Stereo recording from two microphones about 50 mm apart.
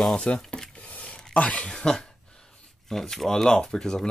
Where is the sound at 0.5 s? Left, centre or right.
Left.